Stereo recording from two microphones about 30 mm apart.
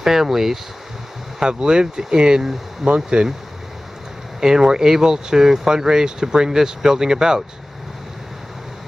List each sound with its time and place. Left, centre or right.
0.0 s speech: centre
1.4 s speech: right
4.4 s speech: right